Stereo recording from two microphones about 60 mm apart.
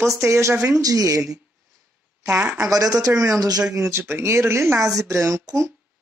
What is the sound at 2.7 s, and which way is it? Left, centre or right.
Speech, right.